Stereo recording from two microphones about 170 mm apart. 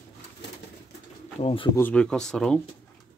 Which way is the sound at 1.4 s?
35° left (ahead or behind).